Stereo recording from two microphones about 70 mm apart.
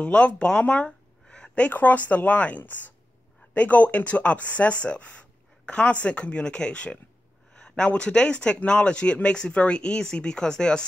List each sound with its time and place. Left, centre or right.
0.0 s speech: centre